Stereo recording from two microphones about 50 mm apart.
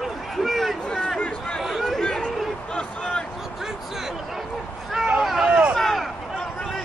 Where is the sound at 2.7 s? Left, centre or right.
Left.